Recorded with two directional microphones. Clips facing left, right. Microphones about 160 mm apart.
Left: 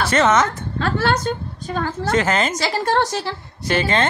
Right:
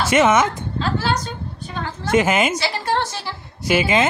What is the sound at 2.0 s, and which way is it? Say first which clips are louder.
Speech: right 3 dB; 10° right (ahead or behind).